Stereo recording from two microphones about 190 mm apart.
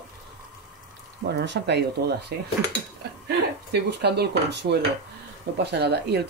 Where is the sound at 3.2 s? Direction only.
60° right (ahead or behind).